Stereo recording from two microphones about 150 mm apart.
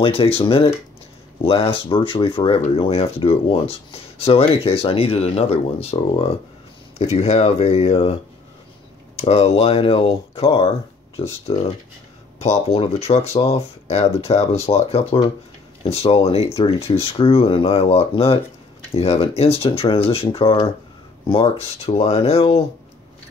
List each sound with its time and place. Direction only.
0.0 s speech: 40° left (ahead or behind)
12.4 s speech: 45° left (ahead or behind)